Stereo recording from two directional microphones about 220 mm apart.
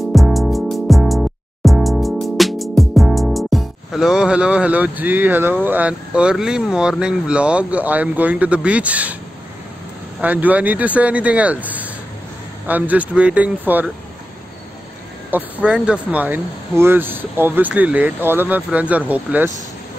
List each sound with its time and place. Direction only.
0.1 s music: centre (ahead or behind)
10.2 s speech: 5° right (ahead or behind)
15.3 s speech: 5° right (ahead or behind)